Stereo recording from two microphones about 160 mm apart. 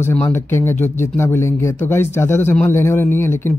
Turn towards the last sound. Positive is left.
turn(degrees=15)  # may be behind; listen again after turning